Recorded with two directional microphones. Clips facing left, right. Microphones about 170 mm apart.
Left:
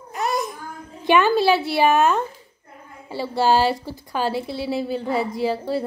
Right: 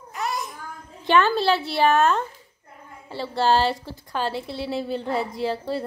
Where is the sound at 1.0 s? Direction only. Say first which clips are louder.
Left 3 dB; 10° left (ahead or behind).